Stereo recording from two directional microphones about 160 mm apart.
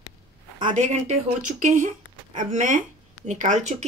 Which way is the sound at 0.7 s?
45° right (ahead or behind).